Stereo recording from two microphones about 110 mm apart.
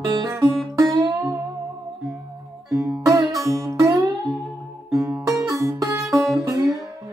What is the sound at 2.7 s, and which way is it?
Music, 35° right (ahead or behind).